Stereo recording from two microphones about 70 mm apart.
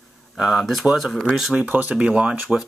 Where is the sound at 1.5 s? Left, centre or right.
Right.